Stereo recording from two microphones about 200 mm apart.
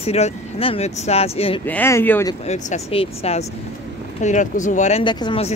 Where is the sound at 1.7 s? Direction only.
10° left (ahead or behind).